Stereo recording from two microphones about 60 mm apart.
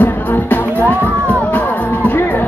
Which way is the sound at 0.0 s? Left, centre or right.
Left.